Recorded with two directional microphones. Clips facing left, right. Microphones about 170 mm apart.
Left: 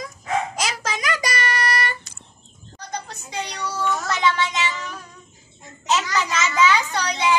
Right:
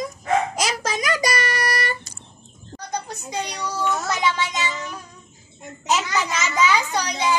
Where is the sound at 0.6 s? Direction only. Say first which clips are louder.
Right 2 dB; 40° right (ahead or behind).